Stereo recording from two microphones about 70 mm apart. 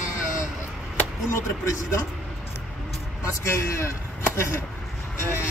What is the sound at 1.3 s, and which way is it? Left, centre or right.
Speech, left.